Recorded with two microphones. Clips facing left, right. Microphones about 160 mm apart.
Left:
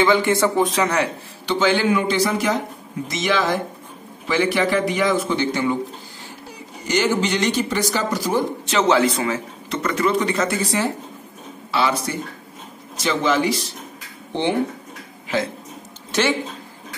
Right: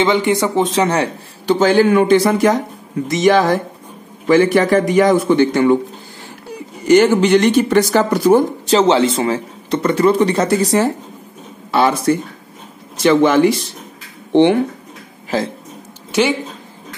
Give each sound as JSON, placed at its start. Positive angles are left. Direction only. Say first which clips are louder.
{"t": 0.0, "sound": "speech", "louder": "right 2 dB", "side_deg": -20}
{"t": 1.4, "sound": "speech", "louder": "right 7 dB", "side_deg": -45}
{"t": 6.9, "sound": "speech", "louder": "right 10 dB", "side_deg": -55}
{"t": 8.6, "sound": "speech", "louder": "right 2 dB", "side_deg": -30}
{"t": 16.1, "sound": "speech", "louder": "right 5 dB", "side_deg": -15}